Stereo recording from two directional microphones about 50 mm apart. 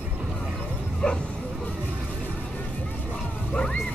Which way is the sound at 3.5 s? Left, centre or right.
Left.